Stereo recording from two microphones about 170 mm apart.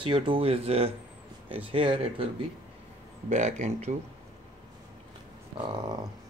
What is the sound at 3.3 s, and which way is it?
Speech, 45° right (ahead or behind).